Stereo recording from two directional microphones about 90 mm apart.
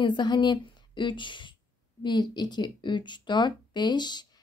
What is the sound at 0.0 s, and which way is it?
A woman's voice, 55° left (ahead or behind).